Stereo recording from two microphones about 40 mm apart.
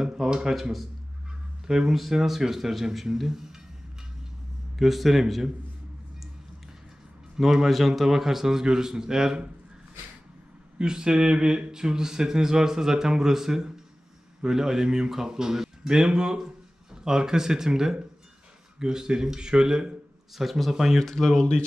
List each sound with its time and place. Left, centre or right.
0.0 s a sound: centre
0.6 s speech: centre
1.7 s speech: centre
4.7 s speech: centre
7.3 s speech: centre
10.8 s speech: centre
20.3 s speech: centre
21.0 s speech: centre